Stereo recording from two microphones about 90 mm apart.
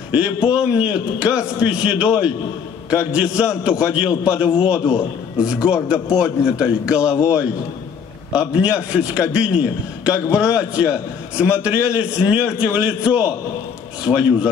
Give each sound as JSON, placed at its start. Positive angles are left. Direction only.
{"t": 0.1, "sound": "a man's voice", "side_deg": -15}
{"t": 8.3, "sound": "a man's voice", "side_deg": -15}